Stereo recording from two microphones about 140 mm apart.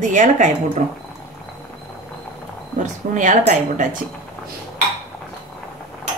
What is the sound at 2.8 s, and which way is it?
A woman's voice, 65° right (ahead or behind).